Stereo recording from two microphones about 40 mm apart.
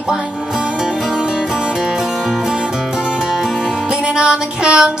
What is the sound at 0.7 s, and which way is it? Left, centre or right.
Music, centre.